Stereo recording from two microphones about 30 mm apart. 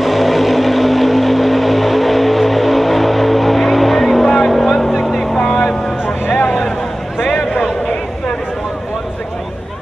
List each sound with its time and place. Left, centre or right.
0.0 s vehicle: centre
6.4 s vehicle: centre